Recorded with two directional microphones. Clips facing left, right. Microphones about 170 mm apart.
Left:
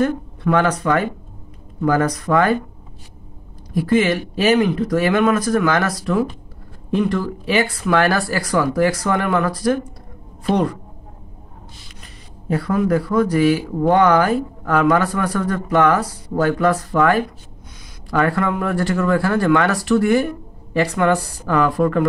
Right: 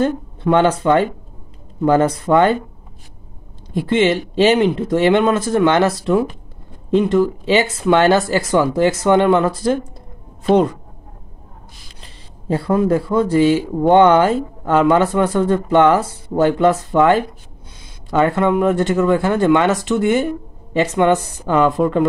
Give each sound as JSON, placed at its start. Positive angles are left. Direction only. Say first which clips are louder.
{"t": 0.0, "sound": "a man's voice", "louder": "right 1 dB", "side_deg": -25}
{"t": 3.7, "sound": "a man's voice", "louder": "right 1 dB", "side_deg": -25}
{"t": 12.0, "sound": "a man's voice", "louder": "left 1 dB", "side_deg": -30}